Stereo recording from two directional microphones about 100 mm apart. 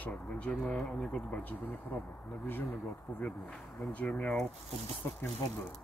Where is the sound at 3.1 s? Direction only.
15° left (ahead or behind).